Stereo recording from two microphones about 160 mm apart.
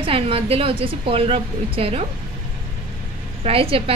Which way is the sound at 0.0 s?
35° right (ahead or behind).